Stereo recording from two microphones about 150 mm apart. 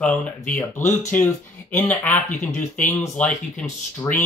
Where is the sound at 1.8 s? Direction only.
10° left (ahead or behind).